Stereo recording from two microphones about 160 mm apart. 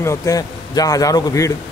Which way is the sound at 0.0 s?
20° left (ahead or behind).